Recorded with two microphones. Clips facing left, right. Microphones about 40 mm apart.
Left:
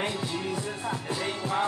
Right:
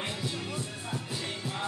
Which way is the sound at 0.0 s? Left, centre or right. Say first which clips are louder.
Left 5 dB; left.